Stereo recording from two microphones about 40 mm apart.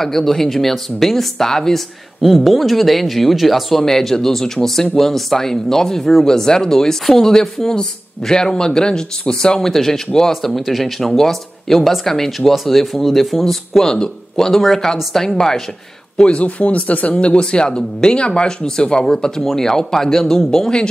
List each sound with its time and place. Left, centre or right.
0.0 s speech: centre
2.2 s speech: centre
3.8 s speech: centre
13.7 s speech: centre
16.2 s speech: left
17.1 s speech: left